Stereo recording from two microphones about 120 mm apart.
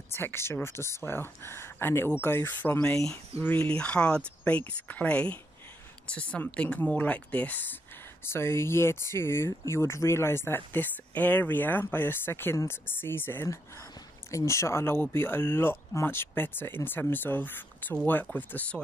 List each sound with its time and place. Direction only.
0.1 s speech: 20° left (ahead or behind)